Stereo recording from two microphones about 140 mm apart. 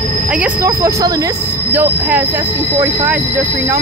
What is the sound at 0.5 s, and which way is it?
Speech, 20° right (ahead or behind).